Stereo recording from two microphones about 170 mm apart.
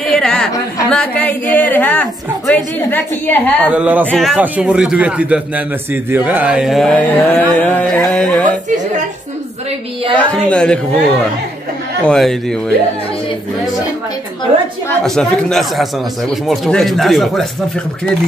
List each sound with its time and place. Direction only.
0.1 s a sound: 5° left (ahead or behind)
0.8 s a woman's voice: 5° left (ahead or behind)
3.7 s a man's voice: 10° right (ahead or behind)
6.0 s mantra: 10° right (ahead or behind); by 8.5 s 5° left (ahead or behind)
8.5 s a sound: 45° right (ahead or behind)
10.1 s mantra: 5° left (ahead or behind)
12.1 s mantra: centre (ahead or behind)
15.0 s mantra: 5° left (ahead or behind)